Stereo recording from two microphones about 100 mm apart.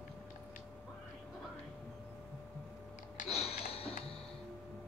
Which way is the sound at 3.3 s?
90° left.